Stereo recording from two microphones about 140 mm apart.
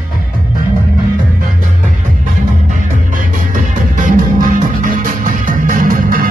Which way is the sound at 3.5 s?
75° right (ahead or behind).